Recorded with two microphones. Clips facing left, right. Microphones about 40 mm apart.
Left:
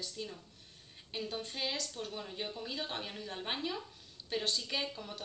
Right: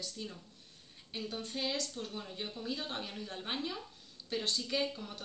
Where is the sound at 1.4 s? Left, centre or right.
Left.